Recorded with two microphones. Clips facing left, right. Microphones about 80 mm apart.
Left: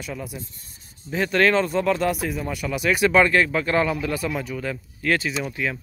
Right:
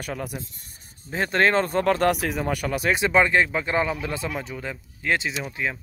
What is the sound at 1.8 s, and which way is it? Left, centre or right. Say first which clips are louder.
Speech: right 1 dB; right.